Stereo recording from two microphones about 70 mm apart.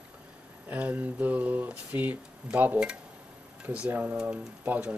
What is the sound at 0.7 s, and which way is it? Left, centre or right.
Speech, right.